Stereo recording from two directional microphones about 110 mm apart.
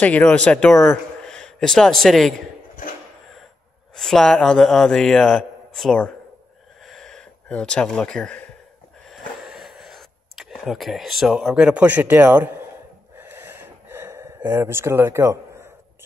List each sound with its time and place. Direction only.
0.0 s speech: 10° left (ahead or behind)
3.9 s a man's voice: 5° left (ahead or behind)
6.9 s a sound: 5° left (ahead or behind); by 12.6 s 15° right (ahead or behind)
13.2 s gasp: 20° right (ahead or behind)